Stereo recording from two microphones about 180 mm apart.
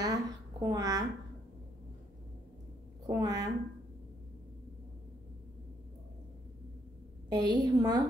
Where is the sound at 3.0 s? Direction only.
20° right (ahead or behind).